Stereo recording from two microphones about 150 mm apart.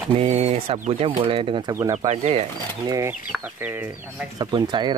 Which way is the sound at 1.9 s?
45° right (ahead or behind).